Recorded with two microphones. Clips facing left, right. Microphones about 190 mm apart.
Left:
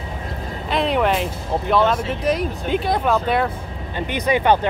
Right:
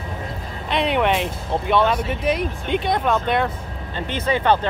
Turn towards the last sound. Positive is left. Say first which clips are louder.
# left 2 dB
turn(degrees=15)  # may be behind; listen again after turning